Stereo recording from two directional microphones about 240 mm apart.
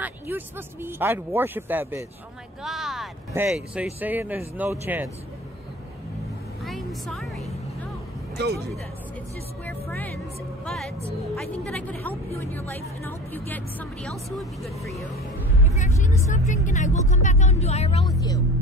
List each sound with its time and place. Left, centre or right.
0.0 s speech: centre
6.6 s a sound: centre
9.7 s a woman's voice: centre
16.0 s speech: left